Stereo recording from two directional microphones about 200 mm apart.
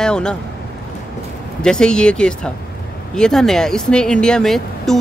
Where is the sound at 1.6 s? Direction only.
5° left (ahead or behind).